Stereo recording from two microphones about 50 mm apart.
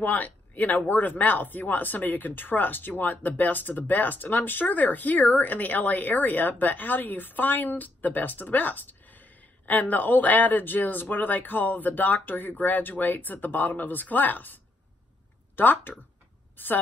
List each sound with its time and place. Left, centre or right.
0.0 s a woman's voice: left